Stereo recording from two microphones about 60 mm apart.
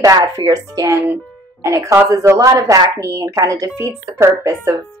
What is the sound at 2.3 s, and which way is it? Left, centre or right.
Speech, right.